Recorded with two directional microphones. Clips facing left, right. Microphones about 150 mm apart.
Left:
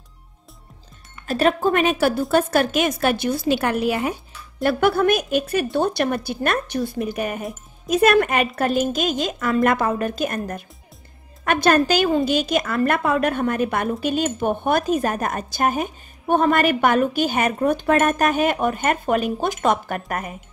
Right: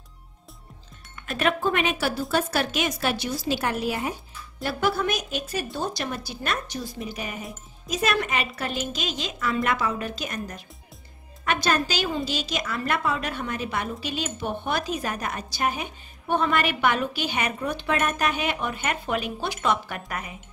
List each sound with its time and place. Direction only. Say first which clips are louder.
1.2 s a woman's voice: left 6 dB; 35° left (ahead or behind)